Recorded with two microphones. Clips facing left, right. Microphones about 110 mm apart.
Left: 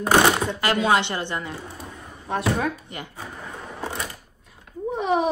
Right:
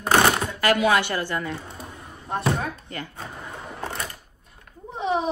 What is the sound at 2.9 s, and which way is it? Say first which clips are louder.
Speech: right 1 dB; 20° left (ahead or behind).